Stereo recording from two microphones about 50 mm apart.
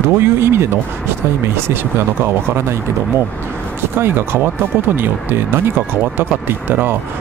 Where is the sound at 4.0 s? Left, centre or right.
Right.